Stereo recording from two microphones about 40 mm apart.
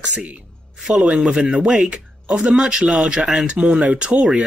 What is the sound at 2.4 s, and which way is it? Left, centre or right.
Speech, right.